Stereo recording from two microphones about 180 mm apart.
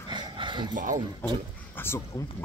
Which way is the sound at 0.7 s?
45° right (ahead or behind).